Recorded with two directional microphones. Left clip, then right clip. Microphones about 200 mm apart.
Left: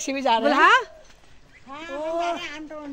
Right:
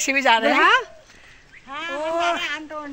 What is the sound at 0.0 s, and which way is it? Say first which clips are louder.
Speech: right 4 dB; 5° right (ahead or behind).